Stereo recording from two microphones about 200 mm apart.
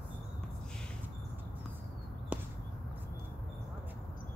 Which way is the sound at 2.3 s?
5° right (ahead or behind).